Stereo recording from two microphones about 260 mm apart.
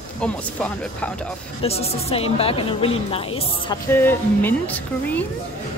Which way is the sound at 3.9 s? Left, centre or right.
Centre.